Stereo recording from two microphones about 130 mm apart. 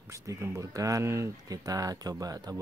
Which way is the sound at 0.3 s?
25° right (ahead or behind).